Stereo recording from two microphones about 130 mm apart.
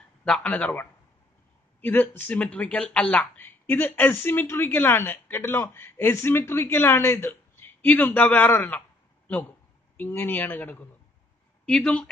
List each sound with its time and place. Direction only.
0.2 s speech: 5° left (ahead or behind)
9.9 s speech: 15° left (ahead or behind)